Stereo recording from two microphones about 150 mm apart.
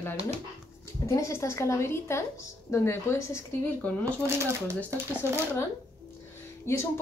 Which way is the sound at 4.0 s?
20° right (ahead or behind).